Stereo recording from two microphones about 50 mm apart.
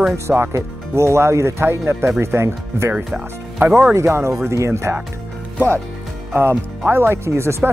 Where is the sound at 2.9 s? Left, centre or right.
Right.